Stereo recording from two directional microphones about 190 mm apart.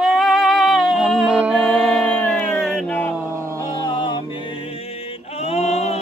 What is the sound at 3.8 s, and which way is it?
Music, 25° left (ahead or behind).